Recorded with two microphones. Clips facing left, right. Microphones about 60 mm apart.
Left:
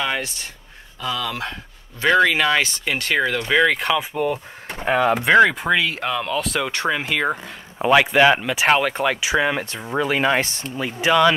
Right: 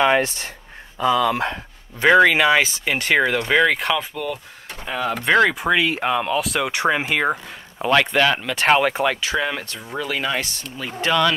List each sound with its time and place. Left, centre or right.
0.0 s speech: right
2.0 s speech: centre
3.5 s speech: centre
4.1 s speech: left
4.8 s speech: left
5.2 s speech: centre
5.6 s speech: centre
6.3 s speech: centre
7.8 s speech: centre; by 10.7 s left
10.8 s speech: centre